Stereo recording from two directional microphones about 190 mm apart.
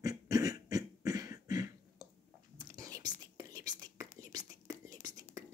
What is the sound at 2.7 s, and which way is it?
Whispering, 20° right (ahead or behind).